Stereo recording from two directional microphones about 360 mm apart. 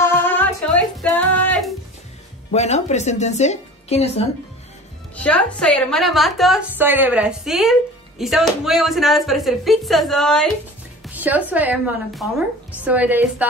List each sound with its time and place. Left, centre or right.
0.0 s music: centre
2.5 s a woman's voice: centre
5.1 s a woman's voice: centre